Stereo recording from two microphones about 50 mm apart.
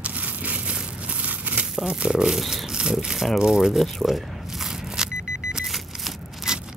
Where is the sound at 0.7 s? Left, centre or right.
Right.